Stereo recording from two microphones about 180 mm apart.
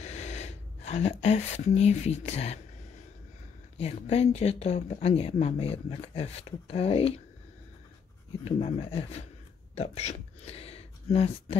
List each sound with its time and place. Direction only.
0.0 s a sound: 40° left (ahead or behind)
1.2 s speech: 35° left (ahead or behind)
3.7 s speech: 35° left (ahead or behind)
8.5 s speech: 35° left (ahead or behind)